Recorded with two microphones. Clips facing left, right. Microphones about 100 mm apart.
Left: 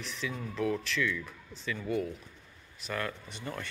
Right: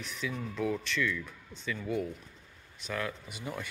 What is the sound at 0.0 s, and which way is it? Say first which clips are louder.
Speech: even; centre (ahead or behind).